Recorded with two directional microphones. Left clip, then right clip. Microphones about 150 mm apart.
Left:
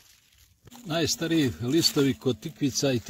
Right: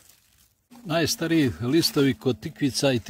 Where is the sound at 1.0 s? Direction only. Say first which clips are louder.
Right 2 dB; 5° right (ahead or behind).